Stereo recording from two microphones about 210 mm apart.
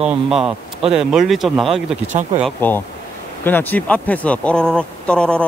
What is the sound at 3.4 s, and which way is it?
Speech, 10° left (ahead or behind).